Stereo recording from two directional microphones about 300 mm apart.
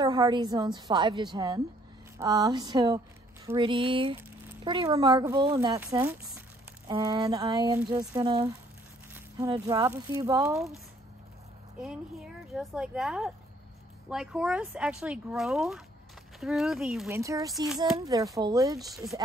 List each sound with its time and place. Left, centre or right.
0.0 s a woman's voice: centre
9.5 s speech: centre
11.8 s speech: centre
18.8 s speech: centre